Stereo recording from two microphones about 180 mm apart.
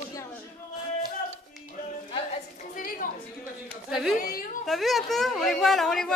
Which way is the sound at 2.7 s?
50° left (ahead or behind).